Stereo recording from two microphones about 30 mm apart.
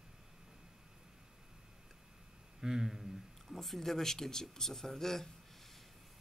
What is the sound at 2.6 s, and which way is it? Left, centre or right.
Speech, right.